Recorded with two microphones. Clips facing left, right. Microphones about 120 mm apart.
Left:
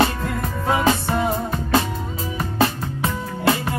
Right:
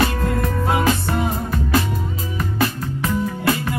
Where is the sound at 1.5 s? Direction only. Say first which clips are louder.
Even; 25° left (ahead or behind).